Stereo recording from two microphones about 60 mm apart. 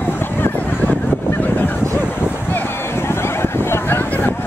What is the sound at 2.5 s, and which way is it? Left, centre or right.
Boat, left.